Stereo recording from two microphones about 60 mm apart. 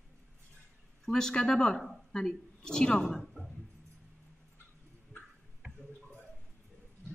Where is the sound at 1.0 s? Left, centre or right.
Centre.